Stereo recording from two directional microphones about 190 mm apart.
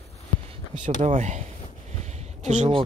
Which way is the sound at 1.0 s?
40° right (ahead or behind).